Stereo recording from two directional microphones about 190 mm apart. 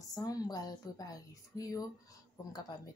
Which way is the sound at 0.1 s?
20° left (ahead or behind).